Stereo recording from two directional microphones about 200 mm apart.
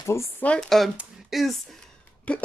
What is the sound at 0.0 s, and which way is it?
Speech, 15° left (ahead or behind).